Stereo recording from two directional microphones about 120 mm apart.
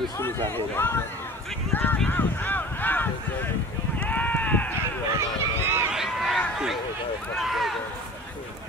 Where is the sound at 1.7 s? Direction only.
15° left (ahead or behind).